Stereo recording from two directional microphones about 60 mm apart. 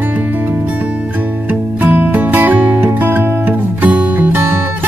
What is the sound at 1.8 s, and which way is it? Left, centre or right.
Music, right.